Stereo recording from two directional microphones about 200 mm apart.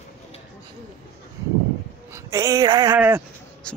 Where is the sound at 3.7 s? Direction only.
5° left (ahead or behind).